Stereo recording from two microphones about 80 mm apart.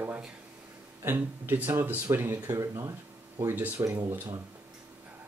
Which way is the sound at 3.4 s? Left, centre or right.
Right.